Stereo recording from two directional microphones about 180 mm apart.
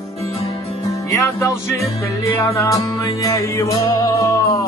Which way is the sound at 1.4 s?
15° left (ahead or behind).